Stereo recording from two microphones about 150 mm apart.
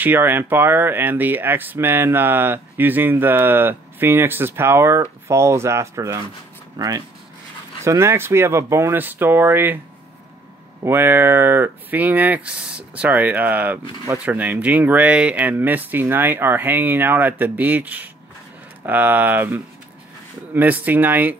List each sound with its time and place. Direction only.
0.0 s speech: 15° right (ahead or behind)
7.8 s speech: 20° right (ahead or behind)
10.8 s speech: 15° right (ahead or behind)